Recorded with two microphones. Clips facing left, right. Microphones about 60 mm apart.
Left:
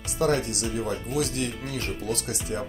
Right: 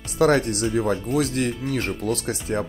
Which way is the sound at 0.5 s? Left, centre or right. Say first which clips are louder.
Right 7 dB; right.